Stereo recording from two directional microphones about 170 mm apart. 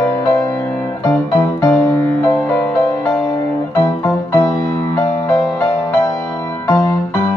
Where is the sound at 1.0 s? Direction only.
20° left (ahead or behind).